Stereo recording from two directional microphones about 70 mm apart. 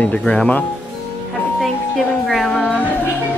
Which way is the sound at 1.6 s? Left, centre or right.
Centre.